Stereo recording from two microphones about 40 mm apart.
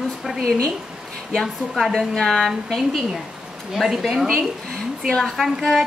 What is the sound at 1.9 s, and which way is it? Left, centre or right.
Speech, centre.